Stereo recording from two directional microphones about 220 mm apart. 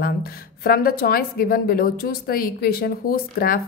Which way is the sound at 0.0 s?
45° left (ahead or behind).